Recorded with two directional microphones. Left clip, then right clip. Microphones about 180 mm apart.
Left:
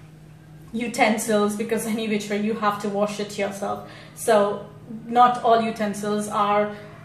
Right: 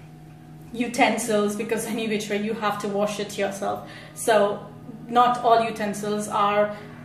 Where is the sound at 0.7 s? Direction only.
15° right (ahead or behind).